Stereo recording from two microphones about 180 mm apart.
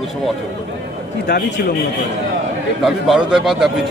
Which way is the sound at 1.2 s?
70° left (ahead or behind).